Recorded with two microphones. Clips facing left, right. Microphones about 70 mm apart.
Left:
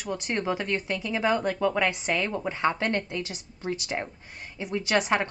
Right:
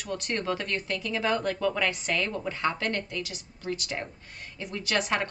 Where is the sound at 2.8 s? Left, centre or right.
Left.